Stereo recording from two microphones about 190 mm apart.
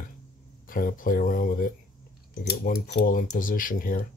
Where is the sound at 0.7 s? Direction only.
45° left (ahead or behind).